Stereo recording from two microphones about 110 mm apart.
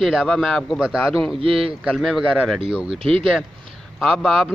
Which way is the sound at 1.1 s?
Centre (ahead or behind).